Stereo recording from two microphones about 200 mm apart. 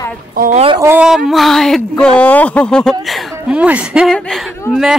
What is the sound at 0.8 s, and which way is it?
Speech, 5° right (ahead or behind).